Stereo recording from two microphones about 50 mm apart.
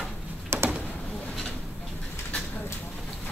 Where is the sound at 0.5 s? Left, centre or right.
Right.